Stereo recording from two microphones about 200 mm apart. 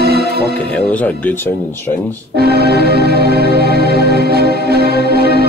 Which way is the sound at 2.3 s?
50° right (ahead or behind).